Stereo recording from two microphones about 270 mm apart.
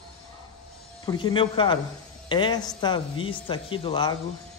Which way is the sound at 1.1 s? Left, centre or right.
Centre.